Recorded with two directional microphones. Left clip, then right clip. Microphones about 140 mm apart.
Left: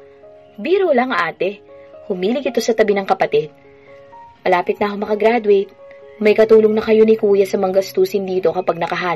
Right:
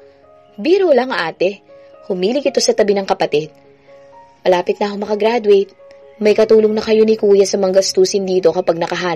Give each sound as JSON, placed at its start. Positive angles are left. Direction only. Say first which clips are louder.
{"t": 0.6, "sound": "speech", "louder": "right 3 dB", "side_deg": -40}
{"t": 4.4, "sound": "speech", "louder": "right 2 dB", "side_deg": -40}